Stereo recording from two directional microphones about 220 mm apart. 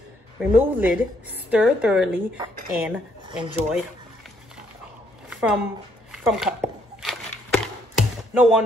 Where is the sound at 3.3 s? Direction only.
20° right (ahead or behind).